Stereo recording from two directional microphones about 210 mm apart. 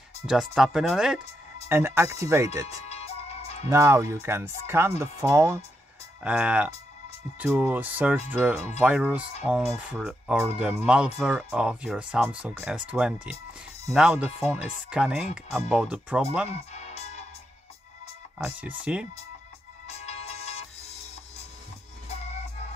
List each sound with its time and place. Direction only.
0.3 s speech: centre (ahead or behind)
2.9 s music: 30° left (ahead or behind)
3.7 s speech: 15° right (ahead or behind)
16.4 s music: 30° left (ahead or behind)
18.4 s speech: 5° right (ahead or behind)
19.9 s music: 30° left (ahead or behind)